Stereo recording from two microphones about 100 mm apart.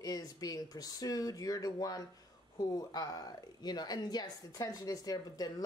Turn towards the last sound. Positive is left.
turn(degrees=40)  # may be behind; listen again after turning